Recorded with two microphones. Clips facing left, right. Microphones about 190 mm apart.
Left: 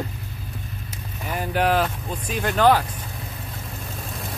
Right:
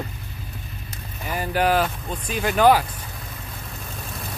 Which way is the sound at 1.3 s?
Centre (ahead or behind).